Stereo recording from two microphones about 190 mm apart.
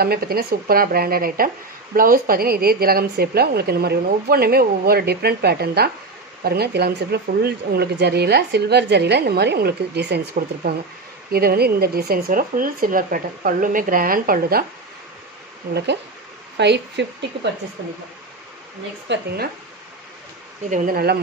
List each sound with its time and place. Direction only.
0.0 s a woman's voice: 55° right (ahead or behind)
16.5 s speech: 65° right (ahead or behind)
19.1 s speech: 65° right (ahead or behind)
20.7 s a woman's voice: 50° right (ahead or behind)